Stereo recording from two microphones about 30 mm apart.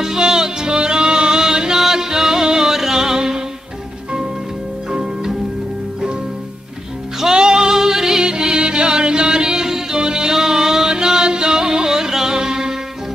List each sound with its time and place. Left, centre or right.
0.2 s music: right
4.9 s music: right
7.3 s music: right